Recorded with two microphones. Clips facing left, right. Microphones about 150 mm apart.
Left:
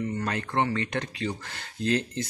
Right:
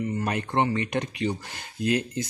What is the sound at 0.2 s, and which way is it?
Speech, 20° right (ahead or behind).